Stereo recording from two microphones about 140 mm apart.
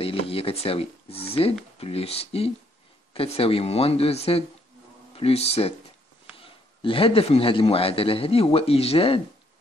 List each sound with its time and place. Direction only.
0.0 s a man's voice: 40° left (ahead or behind)